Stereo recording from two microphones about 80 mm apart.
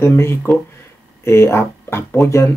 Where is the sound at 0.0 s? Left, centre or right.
Left.